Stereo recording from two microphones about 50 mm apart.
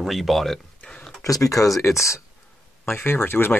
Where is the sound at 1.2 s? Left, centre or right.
Left.